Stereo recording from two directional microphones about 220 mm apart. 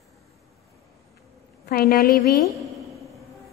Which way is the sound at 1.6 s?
40° left (ahead or behind).